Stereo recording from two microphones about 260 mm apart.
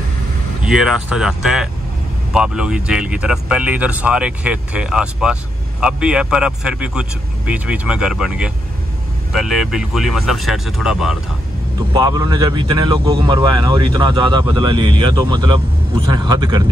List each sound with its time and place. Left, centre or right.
0.6 s speech: centre
11.9 s speech: centre